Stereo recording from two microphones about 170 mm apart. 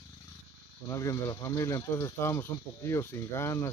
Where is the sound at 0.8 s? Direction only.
20° left (ahead or behind).